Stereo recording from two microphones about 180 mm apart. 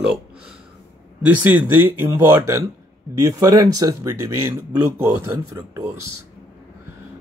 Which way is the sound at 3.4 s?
20° right (ahead or behind).